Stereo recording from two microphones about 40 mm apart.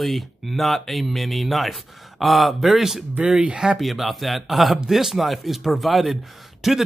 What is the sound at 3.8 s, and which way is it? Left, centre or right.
Speech, centre.